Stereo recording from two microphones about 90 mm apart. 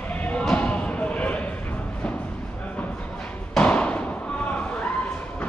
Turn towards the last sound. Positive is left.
turn(degrees=15)  # may be behind; listen again after turning